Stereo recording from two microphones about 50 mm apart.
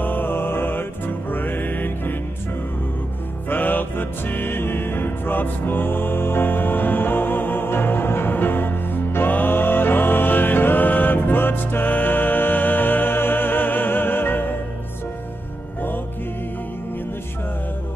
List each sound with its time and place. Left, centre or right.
0.0 s music: left
3.4 s music: left